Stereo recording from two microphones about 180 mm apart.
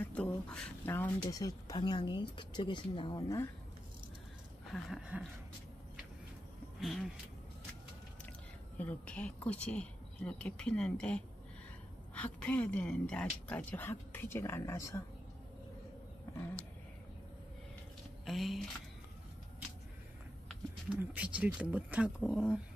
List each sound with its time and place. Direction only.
0.0 s speech: 5° left (ahead or behind)
4.6 s a sound: centre (ahead or behind)
6.8 s speech: centre (ahead or behind)
8.7 s a woman's voice: 10° left (ahead or behind)
18.2 s speech: centre (ahead or behind)
21.0 s speech: 10° right (ahead or behind)